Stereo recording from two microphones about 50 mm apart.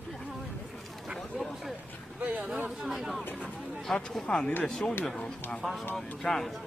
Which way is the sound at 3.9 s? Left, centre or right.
Centre.